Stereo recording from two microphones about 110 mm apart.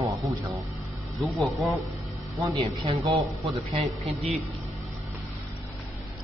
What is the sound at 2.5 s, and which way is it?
Speech, 50° right (ahead or behind).